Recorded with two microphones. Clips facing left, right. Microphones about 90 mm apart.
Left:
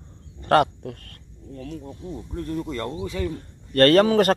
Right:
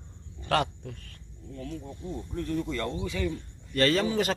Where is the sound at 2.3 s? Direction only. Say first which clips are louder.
Left 2 dB; 35° left (ahead or behind).